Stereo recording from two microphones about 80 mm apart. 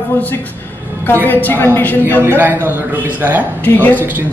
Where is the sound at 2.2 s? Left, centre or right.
Right.